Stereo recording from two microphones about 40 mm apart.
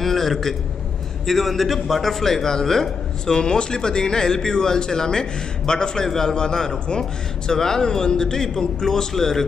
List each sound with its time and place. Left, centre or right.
0.0 s a man's voice: centre